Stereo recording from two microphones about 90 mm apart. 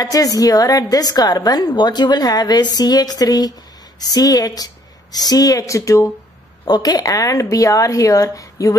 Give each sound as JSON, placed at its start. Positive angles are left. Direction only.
{"t": 0.0, "sound": "a woman's voice", "side_deg": 40}
{"t": 6.6, "sound": "speech", "side_deg": 45}